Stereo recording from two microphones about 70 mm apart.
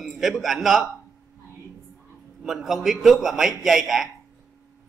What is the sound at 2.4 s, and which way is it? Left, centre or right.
A man's voice, centre.